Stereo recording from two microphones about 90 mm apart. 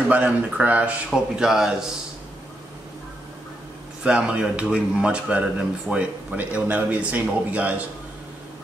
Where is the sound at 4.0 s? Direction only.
10° right (ahead or behind).